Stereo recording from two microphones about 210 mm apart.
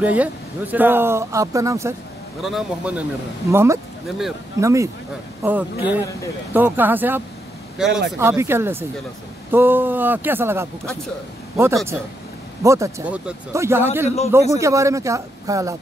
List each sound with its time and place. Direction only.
0.0 s speech: 5° right (ahead or behind)
2.4 s a man's voice: 5° right (ahead or behind)
3.4 s a man's voice: 15° right (ahead or behind)
14.0 s a man's voice: 30° left (ahead or behind)
14.5 s speech: 15° right (ahead or behind)